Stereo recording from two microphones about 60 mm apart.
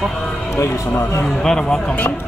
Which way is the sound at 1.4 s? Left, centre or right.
Centre.